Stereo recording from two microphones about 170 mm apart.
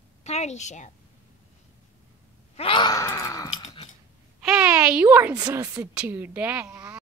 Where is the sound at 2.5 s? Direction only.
30° left (ahead or behind).